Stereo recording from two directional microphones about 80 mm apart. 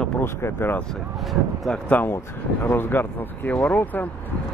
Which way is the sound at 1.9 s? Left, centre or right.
Left.